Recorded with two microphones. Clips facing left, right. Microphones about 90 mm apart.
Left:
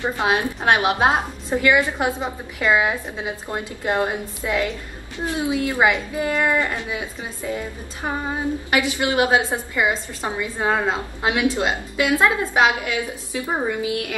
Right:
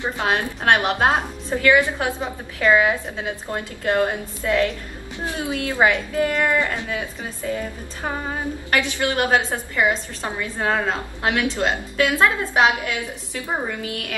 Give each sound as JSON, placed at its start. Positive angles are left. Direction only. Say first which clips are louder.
{"t": 0.0, "sound": "a woman's voice", "louder": "left 2 dB", "side_deg": 15}